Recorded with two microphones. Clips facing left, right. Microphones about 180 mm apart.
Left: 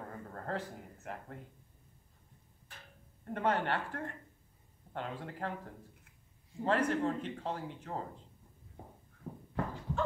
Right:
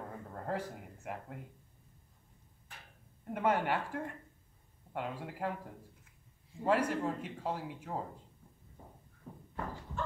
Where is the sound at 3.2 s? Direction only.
10° right (ahead or behind).